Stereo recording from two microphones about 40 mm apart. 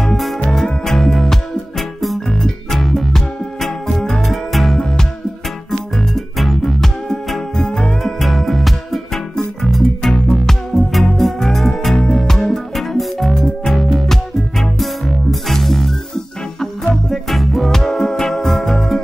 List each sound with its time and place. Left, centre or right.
0.0 s music: centre
4.7 s music: centre
5.7 s music: centre
11.9 s music: centre